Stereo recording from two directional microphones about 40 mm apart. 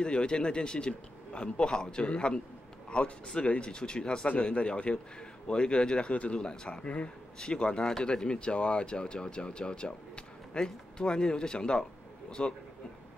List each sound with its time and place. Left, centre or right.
0.0 s speech: left
6.4 s speech: left